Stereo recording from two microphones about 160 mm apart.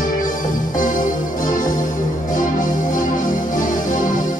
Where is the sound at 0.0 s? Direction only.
55° left (ahead or behind).